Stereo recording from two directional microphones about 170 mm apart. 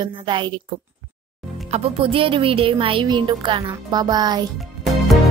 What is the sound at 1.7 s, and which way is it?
A woman's voice, 35° right (ahead or behind).